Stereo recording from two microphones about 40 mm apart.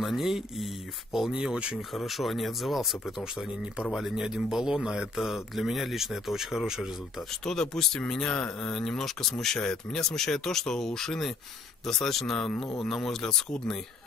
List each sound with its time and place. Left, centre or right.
0.0 s speech: centre
1.3 s speech: right
1.8 s speech: centre
7.4 s speech: centre